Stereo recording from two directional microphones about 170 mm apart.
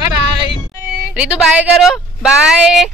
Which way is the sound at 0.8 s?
10° right (ahead or behind).